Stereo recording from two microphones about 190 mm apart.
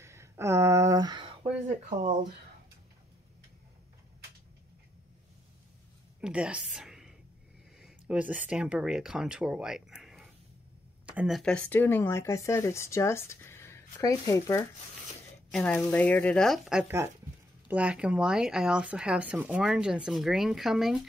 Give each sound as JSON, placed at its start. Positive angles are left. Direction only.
{"t": 0.0, "sound": "a sound", "side_deg": -15}
{"t": 1.4, "sound": "speech", "side_deg": -40}
{"t": 6.2, "sound": "a woman's voice", "side_deg": -5}